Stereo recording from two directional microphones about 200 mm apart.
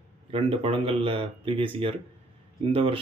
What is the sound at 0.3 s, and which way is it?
Speech, 25° right (ahead or behind).